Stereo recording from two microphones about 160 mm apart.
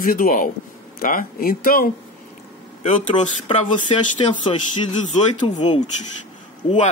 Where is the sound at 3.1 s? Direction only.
30° left (ahead or behind).